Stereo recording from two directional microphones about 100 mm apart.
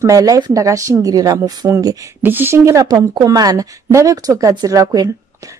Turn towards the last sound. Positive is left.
turn(degrees=-35)  # may be behind; listen again after turning